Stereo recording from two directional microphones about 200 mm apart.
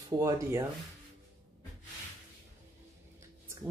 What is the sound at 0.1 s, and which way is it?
Speech, 15° right (ahead or behind).